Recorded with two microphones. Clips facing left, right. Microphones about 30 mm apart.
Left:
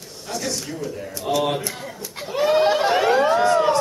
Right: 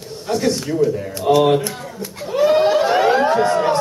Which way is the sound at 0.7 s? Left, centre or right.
Centre.